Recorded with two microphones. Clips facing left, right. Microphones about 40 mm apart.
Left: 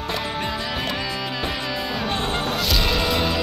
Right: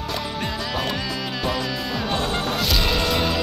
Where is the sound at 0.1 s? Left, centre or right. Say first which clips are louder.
Left 2 dB; centre.